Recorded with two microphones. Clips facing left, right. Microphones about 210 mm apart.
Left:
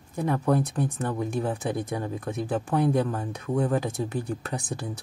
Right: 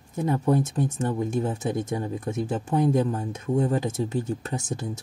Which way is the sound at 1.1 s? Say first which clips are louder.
Right 2 dB; 20° right (ahead or behind).